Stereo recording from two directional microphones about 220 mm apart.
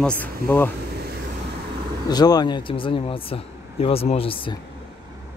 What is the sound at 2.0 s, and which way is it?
Speech, 20° left (ahead or behind).